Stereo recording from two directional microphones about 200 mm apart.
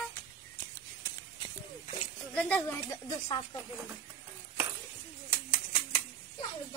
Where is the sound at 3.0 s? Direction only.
20° left (ahead or behind).